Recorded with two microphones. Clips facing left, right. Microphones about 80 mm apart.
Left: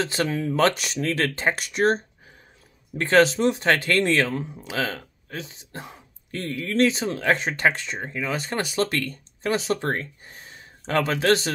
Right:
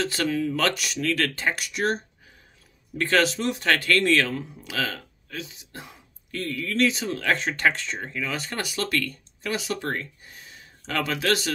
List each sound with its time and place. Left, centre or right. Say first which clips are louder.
0.0 s speech: even; left